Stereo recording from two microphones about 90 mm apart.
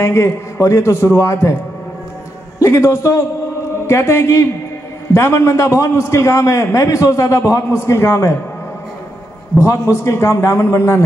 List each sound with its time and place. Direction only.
0.0 s a man's voice: 30° left (ahead or behind)
2.6 s a man's voice: 35° left (ahead or behind)
9.6 s a man's voice: 35° left (ahead or behind)